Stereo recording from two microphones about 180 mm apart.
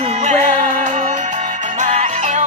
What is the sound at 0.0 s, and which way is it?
Music, 40° right (ahead or behind).